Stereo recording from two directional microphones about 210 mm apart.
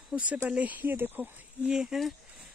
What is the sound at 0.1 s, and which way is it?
Speech, 5° right (ahead or behind).